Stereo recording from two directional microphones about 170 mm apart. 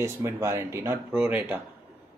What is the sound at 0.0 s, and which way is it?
Speech, 15° right (ahead or behind).